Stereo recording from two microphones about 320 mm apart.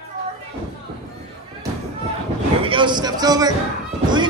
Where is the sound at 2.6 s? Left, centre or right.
Centre.